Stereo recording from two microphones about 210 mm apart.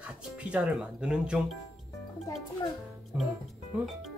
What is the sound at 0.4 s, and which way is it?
Speech, 5° right (ahead or behind).